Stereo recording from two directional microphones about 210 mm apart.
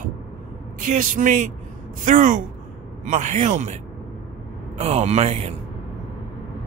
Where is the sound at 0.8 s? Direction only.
40° right (ahead or behind).